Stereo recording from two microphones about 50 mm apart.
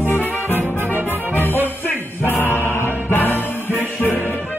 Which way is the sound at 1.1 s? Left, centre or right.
Left.